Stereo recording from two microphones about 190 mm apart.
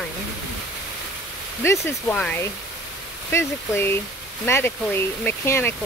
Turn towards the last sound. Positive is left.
turn(degrees=15)  # may be behind; listen again after turning